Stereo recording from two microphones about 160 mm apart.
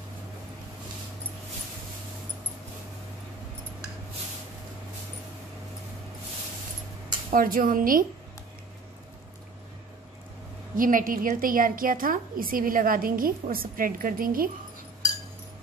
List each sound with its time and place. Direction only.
7.3 s a woman's voice: 60° right (ahead or behind)
10.8 s a woman's voice: 60° right (ahead or behind)